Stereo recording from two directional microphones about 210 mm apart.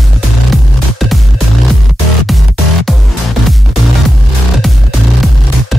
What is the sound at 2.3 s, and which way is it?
Music, centre (ahead or behind).